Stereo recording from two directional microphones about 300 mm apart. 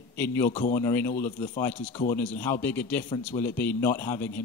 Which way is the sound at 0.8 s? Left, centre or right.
Centre.